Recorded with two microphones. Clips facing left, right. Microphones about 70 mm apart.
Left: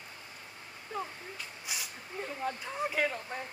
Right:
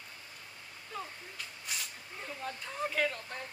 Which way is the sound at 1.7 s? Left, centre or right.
Centre.